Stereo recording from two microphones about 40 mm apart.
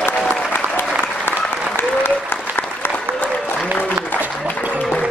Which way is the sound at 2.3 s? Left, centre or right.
Left.